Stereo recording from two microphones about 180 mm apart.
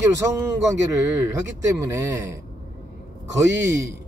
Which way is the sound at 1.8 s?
15° right (ahead or behind).